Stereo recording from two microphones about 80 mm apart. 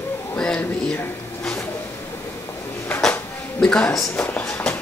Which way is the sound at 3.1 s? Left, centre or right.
Centre.